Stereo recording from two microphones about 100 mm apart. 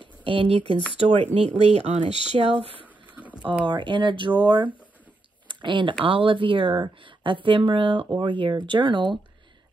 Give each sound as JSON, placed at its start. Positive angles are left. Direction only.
{"t": 0.2, "sound": "a woman's voice", "side_deg": -60}
{"t": 0.9, "sound": "speech", "side_deg": -85}
{"t": 2.3, "sound": "speech", "side_deg": -70}
{"t": 3.6, "sound": "a woman's voice", "side_deg": -55}